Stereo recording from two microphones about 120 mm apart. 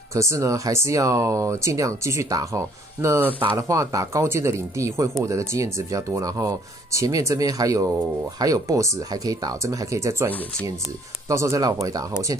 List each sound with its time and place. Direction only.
0.1 s speech: 25° right (ahead or behind)
3.5 s speech: 25° right (ahead or behind)